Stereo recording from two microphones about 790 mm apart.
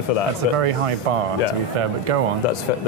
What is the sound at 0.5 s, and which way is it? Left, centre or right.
Speech, right.